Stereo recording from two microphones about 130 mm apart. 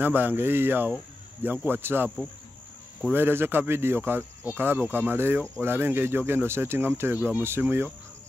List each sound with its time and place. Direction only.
0.0 s speech: 15° right (ahead or behind)
3.1 s speech: 15° right (ahead or behind)